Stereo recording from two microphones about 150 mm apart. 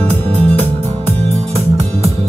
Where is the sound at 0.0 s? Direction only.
45° right (ahead or behind).